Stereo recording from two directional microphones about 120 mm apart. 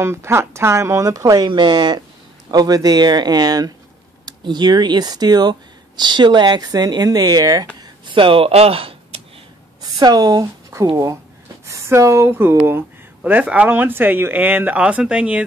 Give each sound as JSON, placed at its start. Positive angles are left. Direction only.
{"t": 0.0, "sound": "speech", "side_deg": -20}
{"t": 8.1, "sound": "speech", "side_deg": -45}
{"t": 9.8, "sound": "a woman's voice", "side_deg": -35}